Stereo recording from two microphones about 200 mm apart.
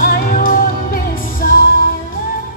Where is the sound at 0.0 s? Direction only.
45° left (ahead or behind).